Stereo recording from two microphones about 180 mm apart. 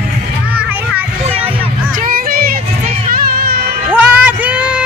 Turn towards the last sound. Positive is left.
turn(degrees=-5)  # may be behind; listen again after turning